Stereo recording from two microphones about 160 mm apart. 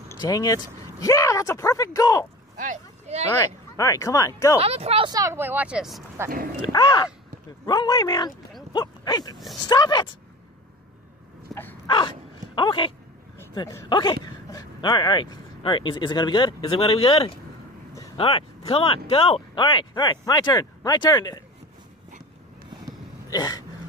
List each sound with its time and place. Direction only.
0.1 s speech: 25° left (ahead or behind)
2.5 s a sound: 55° right (ahead or behind)
3.7 s speech: 20° left (ahead or behind)
4.6 s speech: 40° right (ahead or behind)
5.1 s speech: 20° right (ahead or behind); by 6.0 s centre (ahead or behind)
6.6 s speech: 30° left (ahead or behind)
8.7 s a sound: 25° left (ahead or behind)
9.7 s speech: 25° left (ahead or behind)
11.5 s a sound: centre (ahead or behind)
12.5 s speech: 30° left (ahead or behind)
23.3 s speech: 25° left (ahead or behind)